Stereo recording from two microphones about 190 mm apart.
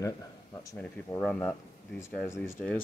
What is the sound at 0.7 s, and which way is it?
Speech, 5° left (ahead or behind).